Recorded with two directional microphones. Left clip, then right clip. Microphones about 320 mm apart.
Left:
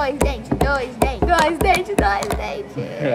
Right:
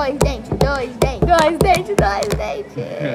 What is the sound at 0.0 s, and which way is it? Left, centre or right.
Music, centre.